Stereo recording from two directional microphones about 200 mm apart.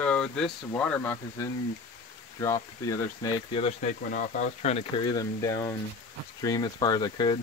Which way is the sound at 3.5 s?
30° left (ahead or behind).